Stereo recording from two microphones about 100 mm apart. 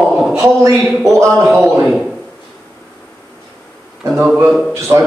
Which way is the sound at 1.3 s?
20° right (ahead or behind).